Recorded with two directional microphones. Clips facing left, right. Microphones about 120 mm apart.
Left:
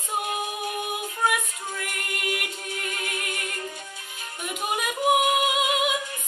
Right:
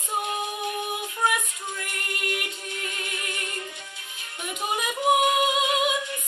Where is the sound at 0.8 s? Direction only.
5° left (ahead or behind).